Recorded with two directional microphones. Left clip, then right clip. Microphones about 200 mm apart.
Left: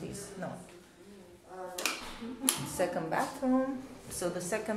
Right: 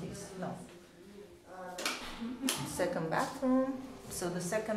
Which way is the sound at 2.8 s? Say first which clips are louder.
Left 1 dB; centre (ahead or behind).